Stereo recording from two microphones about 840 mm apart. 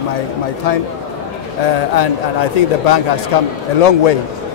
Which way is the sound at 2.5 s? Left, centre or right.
Left.